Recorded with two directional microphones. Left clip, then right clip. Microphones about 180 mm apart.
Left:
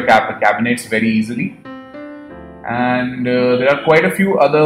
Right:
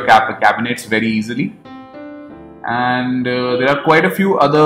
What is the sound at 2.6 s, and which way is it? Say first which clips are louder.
Speech: right 1 dB; 40° right (ahead or behind).